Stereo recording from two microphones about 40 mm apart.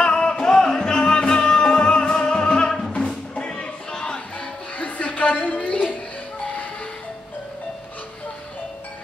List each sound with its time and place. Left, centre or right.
0.0 s music: left
3.3 s music: left
4.7 s a sound: left